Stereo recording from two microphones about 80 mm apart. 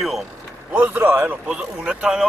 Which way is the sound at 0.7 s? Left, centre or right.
Right.